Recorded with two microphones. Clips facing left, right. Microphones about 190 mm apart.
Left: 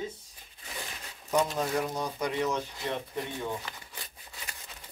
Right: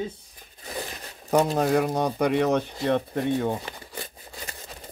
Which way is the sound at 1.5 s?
65° right (ahead or behind).